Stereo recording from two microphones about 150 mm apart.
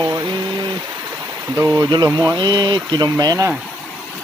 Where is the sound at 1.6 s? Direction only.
20° right (ahead or behind).